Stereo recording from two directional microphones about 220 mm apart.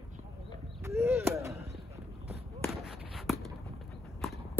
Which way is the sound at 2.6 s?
Centre (ahead or behind).